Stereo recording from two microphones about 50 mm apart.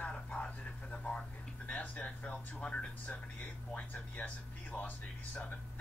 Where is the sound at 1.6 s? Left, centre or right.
Left.